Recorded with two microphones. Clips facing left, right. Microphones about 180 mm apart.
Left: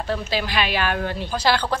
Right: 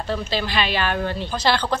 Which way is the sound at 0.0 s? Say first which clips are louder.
Even; 10° left (ahead or behind).